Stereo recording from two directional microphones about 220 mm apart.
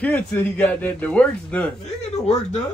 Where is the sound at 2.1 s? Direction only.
30° left (ahead or behind).